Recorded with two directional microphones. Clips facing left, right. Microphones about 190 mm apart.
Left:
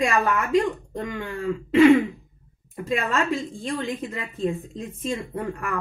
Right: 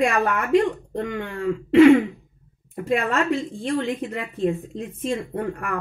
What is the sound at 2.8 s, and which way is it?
A woman's voice, 60° right (ahead or behind).